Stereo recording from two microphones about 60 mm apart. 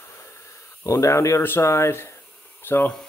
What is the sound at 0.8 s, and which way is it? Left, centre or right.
Speech, left.